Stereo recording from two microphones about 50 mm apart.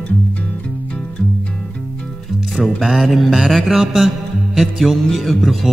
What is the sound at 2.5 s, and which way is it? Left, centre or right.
Music, centre.